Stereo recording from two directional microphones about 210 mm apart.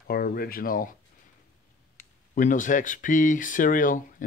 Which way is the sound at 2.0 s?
40° left (ahead or behind).